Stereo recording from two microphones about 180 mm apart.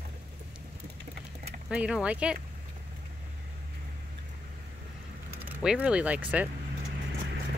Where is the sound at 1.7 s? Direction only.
5° right (ahead or behind).